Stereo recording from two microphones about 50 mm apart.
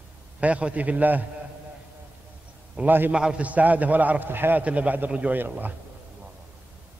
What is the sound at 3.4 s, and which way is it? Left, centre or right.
A man's voice, right.